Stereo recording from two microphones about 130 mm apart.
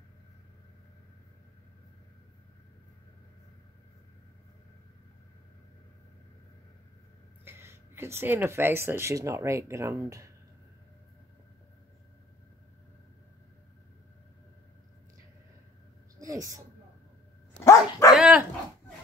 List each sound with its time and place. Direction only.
7.4 s speech: 20° right (ahead or behind)
16.2 s a sound: 25° right (ahead or behind)
17.6 s dog: 20° left (ahead or behind)
18.1 s dog: 10° right (ahead or behind)